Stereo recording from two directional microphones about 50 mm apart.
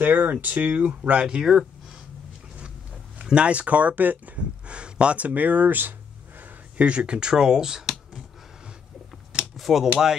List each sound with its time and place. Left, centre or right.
0.0 s speech: right
1.2 s speech: centre
3.2 s a sound: centre
3.4 s speech: right
4.6 s speech: right
9.6 s a sound: centre